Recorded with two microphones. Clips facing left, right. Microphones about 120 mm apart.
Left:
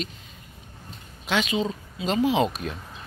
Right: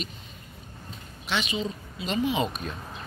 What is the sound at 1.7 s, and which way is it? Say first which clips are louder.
Speech: left 4 dB; 90° left.